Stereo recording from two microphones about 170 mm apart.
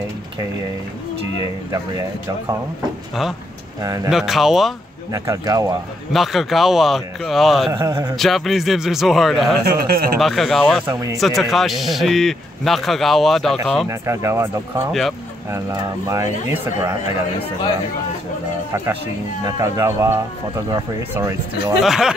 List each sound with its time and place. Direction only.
1.4 s speech: 20° right (ahead or behind)
3.8 s speech: 20° right (ahead or behind)
4.1 s a man's voice: centre (ahead or behind)
5.1 s speech: 20° right (ahead or behind)
6.1 s a man's voice: centre (ahead or behind)
7.7 s speech: 25° right (ahead or behind)
8.2 s a man's voice: centre (ahead or behind)
9.7 s speech: 70° right (ahead or behind)
10.1 s a man's voice: centre (ahead or behind)
13.8 s speech: 15° right (ahead or behind)
14.9 s a man's voice: centre (ahead or behind)
15.5 s speech: 20° right (ahead or behind)
19.4 s speech: 15° right (ahead or behind)
21.8 s a man's voice: 5° right (ahead or behind)